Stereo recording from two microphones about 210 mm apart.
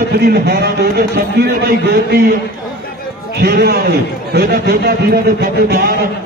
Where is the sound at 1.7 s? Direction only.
45° right (ahead or behind).